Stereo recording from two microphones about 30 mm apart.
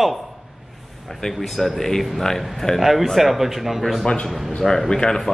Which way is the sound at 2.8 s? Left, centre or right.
Centre.